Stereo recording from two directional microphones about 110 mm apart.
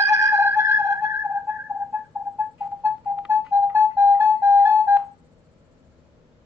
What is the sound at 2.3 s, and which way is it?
Music, 15° right (ahead or behind).